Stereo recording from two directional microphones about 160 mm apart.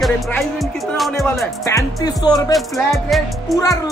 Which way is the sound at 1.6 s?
20° left (ahead or behind).